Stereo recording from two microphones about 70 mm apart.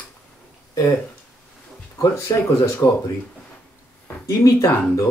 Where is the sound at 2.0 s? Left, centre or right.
Left.